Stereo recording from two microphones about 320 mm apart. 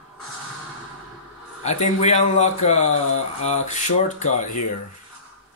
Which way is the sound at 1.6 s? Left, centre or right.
Left.